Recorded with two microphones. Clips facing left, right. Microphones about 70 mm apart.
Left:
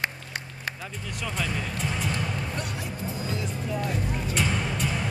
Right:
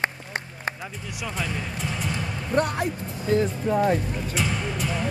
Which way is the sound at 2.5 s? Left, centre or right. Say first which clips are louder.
Right 10 dB; right.